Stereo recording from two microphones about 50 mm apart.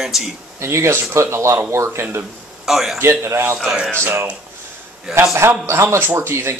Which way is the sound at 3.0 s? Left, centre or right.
Right.